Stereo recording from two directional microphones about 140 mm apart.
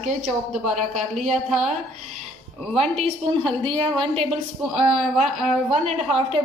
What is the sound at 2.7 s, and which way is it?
A woman's voice, 45° right (ahead or behind).